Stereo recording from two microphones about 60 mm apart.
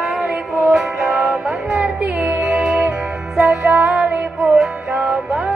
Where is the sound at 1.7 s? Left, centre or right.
Right.